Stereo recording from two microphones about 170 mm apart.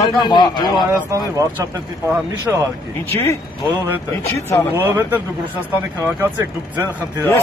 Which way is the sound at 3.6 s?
20° right (ahead or behind).